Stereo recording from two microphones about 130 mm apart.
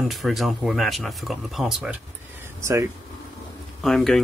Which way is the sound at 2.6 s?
25° right (ahead or behind).